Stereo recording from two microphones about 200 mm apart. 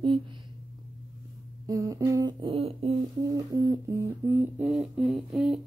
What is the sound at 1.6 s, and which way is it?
Humming, 15° right (ahead or behind).